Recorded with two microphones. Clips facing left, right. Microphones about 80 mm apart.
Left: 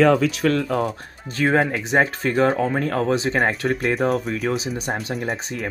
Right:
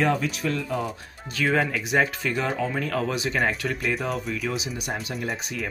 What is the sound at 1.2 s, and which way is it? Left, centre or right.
Speech, left.